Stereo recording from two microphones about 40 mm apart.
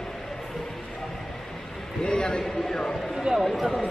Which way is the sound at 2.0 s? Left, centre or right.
Centre.